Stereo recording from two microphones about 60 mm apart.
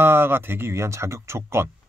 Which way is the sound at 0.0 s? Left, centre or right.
Right.